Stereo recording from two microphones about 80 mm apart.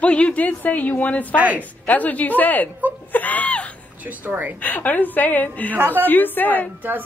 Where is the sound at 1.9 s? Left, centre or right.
Centre.